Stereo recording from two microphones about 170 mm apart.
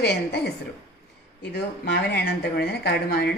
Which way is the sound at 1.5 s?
75° left (ahead or behind).